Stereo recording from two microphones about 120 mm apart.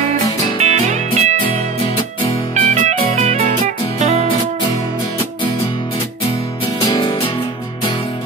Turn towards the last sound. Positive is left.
turn(degrees=35)  # may be behind; listen again after turning